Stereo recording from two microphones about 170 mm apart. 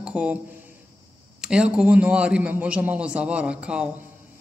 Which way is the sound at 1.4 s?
5° right (ahead or behind).